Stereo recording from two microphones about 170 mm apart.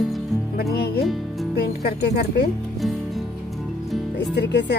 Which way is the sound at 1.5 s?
70° left (ahead or behind).